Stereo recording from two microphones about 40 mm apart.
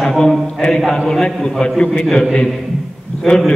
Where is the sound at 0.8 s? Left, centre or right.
Centre.